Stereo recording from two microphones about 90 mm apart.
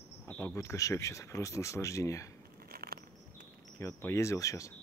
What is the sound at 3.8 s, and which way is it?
Speech, 30° left (ahead or behind).